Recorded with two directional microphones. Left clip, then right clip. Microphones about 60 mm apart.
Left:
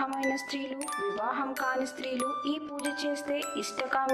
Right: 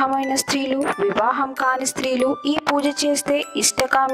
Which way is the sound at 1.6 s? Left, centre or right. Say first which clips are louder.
Right 11 dB; right.